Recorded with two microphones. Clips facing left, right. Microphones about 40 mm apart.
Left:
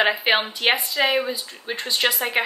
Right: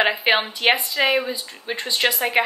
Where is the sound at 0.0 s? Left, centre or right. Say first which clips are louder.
Right 1 dB; centre.